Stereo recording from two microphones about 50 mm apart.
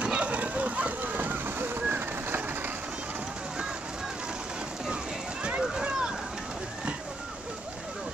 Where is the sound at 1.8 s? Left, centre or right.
Right.